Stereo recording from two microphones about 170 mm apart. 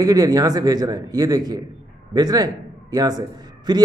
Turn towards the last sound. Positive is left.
turn(degrees=-25)  # may be behind; listen again after turning